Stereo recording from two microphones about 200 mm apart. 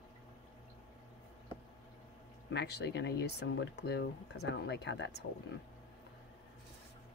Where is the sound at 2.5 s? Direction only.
55° left (ahead or behind).